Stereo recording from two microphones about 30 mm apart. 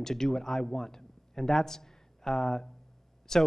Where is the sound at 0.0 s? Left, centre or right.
Centre.